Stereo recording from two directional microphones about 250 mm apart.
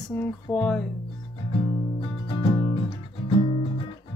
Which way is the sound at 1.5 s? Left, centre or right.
Left.